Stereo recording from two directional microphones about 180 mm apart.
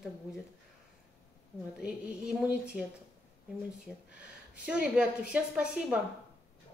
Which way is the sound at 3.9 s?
Centre (ahead or behind).